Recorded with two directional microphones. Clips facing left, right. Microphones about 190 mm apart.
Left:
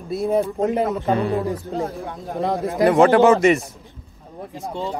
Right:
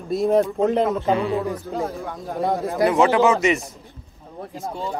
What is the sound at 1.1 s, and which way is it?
Speech, 40° left (ahead or behind).